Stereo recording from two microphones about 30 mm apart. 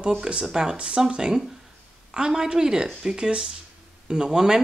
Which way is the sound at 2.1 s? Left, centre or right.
Right.